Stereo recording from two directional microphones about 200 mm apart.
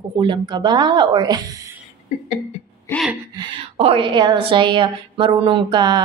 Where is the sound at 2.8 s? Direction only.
Centre (ahead or behind).